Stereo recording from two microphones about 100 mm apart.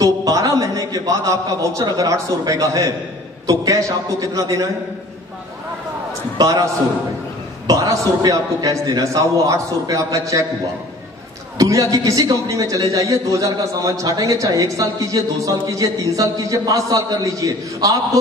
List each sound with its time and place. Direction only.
0.0 s a man's voice: 35° right (ahead or behind)
6.3 s a man's voice: 35° right (ahead or behind)
11.5 s a man's voice: 35° right (ahead or behind)